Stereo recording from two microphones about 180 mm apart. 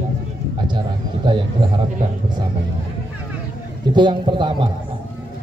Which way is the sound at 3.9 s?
25° right (ahead or behind).